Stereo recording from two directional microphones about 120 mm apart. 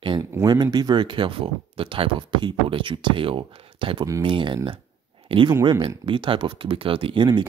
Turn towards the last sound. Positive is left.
turn(degrees=-40)  # may be behind; listen again after turning